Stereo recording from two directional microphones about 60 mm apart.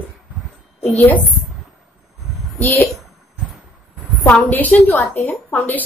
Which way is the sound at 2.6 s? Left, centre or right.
Left.